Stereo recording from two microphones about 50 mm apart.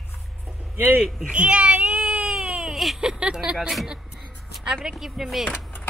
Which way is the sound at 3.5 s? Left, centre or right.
Centre.